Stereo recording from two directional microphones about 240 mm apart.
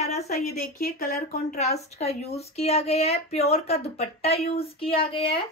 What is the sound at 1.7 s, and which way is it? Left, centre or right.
Speech, left.